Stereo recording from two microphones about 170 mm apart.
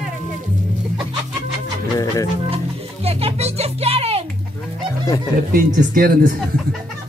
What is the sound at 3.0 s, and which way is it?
Music, 35° right (ahead or behind).